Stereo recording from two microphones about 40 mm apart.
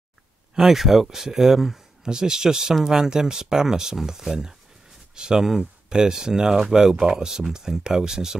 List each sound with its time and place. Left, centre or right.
0.6 s speech: centre